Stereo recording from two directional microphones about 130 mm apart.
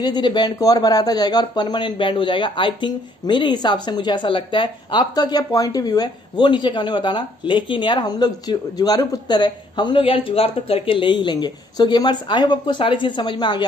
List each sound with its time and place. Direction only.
0.0 s speech: 35° left (ahead or behind)